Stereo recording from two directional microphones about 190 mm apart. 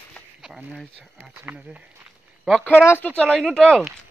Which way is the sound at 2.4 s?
5° left (ahead or behind).